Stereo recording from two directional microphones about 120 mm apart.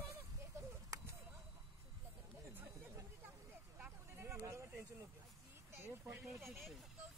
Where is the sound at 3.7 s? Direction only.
15° right (ahead or behind).